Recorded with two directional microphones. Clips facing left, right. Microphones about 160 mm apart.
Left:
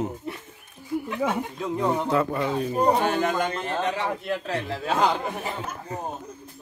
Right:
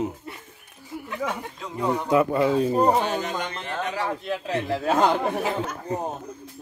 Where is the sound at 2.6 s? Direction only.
35° right (ahead or behind).